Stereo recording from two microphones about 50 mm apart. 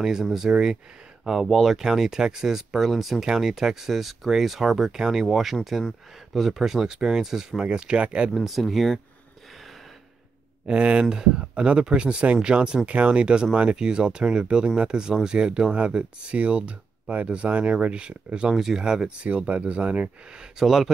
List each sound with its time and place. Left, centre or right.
0.0 s speech: centre
8.3 s speech: centre
10.7 s speech: right
18.5 s speech: centre; by 20.1 s right
20.5 s speech: centre